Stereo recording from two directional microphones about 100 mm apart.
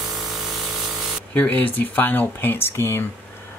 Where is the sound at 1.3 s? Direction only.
15° left (ahead or behind).